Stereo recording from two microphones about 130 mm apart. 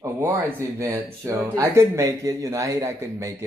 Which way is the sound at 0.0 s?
20° right (ahead or behind).